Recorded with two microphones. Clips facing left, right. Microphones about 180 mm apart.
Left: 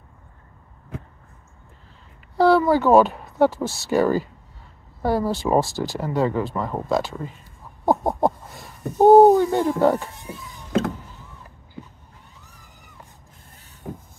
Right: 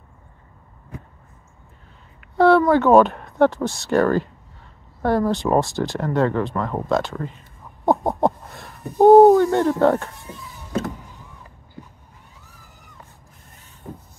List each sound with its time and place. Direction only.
2.3 s speech: centre (ahead or behind)
7.8 s a sound: centre (ahead or behind)
9.0 s speech: centre (ahead or behind)
13.9 s vehicle: 75° left (ahead or behind)